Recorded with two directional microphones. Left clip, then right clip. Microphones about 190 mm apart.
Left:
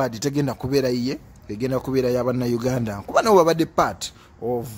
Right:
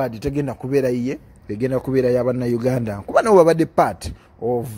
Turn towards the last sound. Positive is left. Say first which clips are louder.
# right 4 dB
turn(degrees=-5)  # may be behind; listen again after turning